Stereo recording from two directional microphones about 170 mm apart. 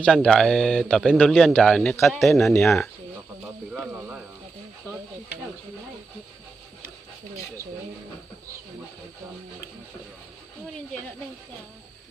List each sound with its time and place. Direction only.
0.0 s speech: 5° left (ahead or behind)
3.7 s snake: 10° right (ahead or behind)